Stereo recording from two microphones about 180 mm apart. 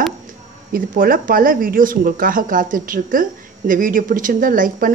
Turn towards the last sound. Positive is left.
turn(degrees=-50)  # may be behind; listen again after turning